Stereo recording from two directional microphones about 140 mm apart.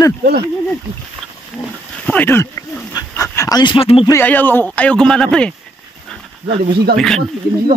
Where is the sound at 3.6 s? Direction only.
40° left (ahead or behind).